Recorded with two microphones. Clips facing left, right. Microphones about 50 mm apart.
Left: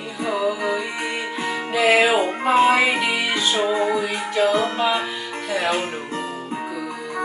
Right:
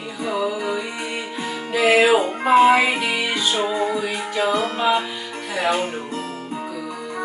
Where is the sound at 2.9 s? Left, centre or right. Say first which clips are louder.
Left 1 dB; centre.